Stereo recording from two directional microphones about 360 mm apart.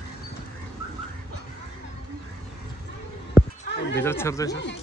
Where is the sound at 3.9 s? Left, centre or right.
Centre.